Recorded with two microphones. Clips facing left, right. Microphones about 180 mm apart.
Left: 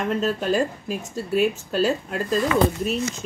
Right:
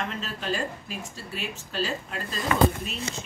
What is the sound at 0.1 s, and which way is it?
Speech, 45° left (ahead or behind).